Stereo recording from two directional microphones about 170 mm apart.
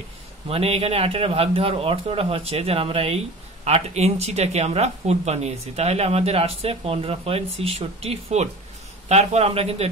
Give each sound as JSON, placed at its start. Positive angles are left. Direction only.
{"t": 0.5, "sound": "speech", "side_deg": -35}